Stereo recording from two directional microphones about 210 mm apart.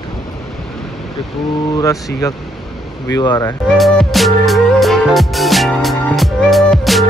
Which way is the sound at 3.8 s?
Centre (ahead or behind).